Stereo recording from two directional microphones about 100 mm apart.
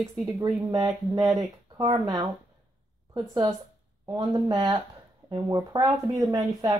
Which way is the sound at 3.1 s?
40° right (ahead or behind).